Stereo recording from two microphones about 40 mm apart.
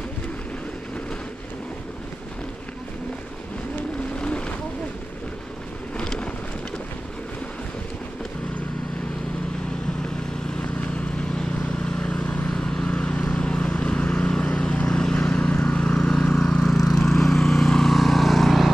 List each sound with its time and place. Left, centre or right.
4.2 s boat: left
5.9 s vehicle: left
11.6 s vehicle: left; by 18.7 s centre